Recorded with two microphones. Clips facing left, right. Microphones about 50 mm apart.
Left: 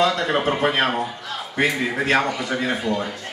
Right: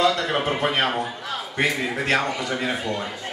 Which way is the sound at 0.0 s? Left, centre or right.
Centre.